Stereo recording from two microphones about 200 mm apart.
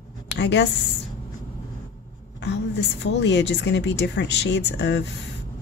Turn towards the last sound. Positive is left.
turn(degrees=60)  # may be behind; listen again after turning